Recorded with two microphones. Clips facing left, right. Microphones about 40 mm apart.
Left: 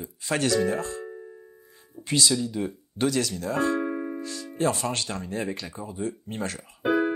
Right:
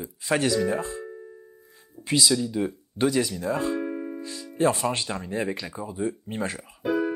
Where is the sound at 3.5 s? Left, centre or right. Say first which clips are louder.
Left 4 dB; left.